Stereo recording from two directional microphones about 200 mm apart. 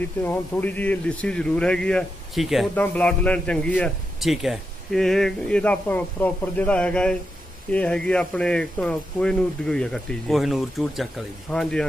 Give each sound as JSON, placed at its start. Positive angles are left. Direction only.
{"t": 0.0, "sound": "speech", "side_deg": 10}